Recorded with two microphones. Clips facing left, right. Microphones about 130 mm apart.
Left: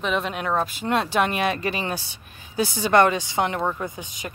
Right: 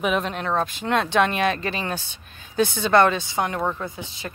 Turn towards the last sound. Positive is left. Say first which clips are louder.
# even
turn(degrees=15)  # may be behind; listen again after turning